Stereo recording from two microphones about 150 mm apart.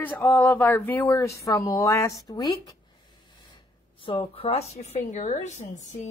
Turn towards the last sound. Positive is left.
turn(degrees=55)  # may be behind; listen again after turning